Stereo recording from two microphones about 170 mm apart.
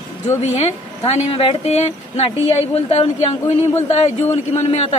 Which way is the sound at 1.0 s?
35° left (ahead or behind).